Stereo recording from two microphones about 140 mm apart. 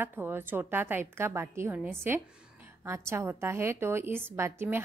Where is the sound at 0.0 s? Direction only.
15° right (ahead or behind).